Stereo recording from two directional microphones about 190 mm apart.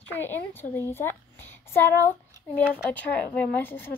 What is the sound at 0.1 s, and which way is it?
A child's voice, 10° left (ahead or behind).